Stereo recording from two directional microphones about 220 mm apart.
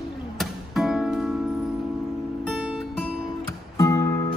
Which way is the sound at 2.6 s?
Centre (ahead or behind).